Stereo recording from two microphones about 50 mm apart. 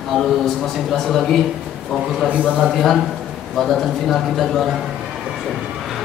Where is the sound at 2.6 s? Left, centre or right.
Centre.